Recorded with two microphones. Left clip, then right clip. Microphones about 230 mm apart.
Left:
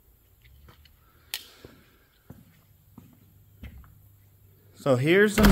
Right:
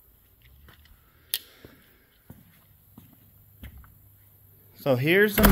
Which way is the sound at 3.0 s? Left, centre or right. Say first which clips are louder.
Left 1 dB; right.